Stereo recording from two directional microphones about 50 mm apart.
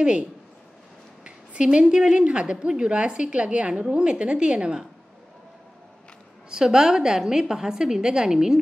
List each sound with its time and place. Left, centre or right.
1.2 s speech: right
6.5 s a woman's voice: centre